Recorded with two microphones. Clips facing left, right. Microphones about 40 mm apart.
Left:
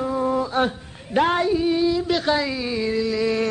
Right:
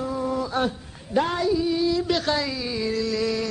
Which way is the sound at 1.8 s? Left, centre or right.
Centre.